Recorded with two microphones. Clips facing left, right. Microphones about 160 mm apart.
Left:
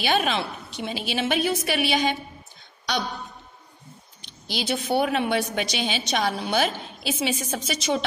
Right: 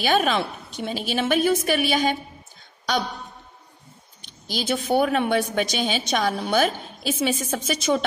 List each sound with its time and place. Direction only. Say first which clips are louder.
0.0 s a woman's voice: right 3 dB; 45° right (ahead or behind)
4.2 s a woman's voice: right 1 dB; 45° right (ahead or behind)